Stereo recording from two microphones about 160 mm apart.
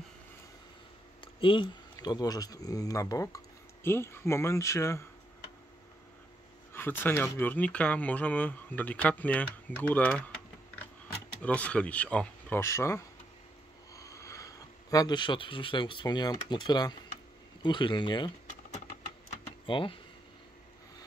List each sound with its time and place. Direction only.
1.2 s speech: 30° left (ahead or behind)
6.7 s speech: 15° left (ahead or behind)
11.4 s a man's voice: 10° left (ahead or behind); by 18.3 s 30° left (ahead or behind)
18.5 s a sound: 50° left (ahead or behind)
19.6 s speech: 30° left (ahead or behind)